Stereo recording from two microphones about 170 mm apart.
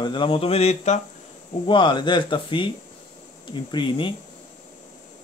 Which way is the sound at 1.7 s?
30° left (ahead or behind).